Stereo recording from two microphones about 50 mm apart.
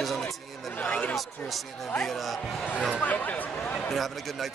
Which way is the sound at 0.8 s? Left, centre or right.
Left.